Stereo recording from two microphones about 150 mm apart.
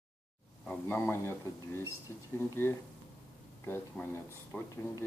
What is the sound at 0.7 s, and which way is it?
Speech, 10° left (ahead or behind).